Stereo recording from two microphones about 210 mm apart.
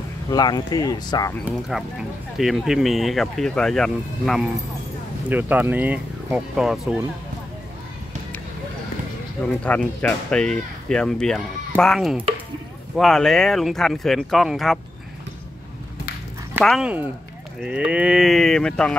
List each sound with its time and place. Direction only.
0.3 s speech: 20° left (ahead or behind)
1.4 s speech: 5° right (ahead or behind)
9.6 s speech: 5° left (ahead or behind)
16.6 s speech: centre (ahead or behind)